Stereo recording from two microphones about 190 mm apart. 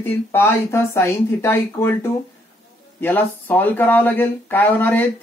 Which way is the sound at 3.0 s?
10° left (ahead or behind).